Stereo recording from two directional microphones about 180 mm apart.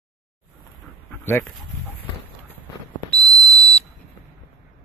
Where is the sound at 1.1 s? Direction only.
10° left (ahead or behind).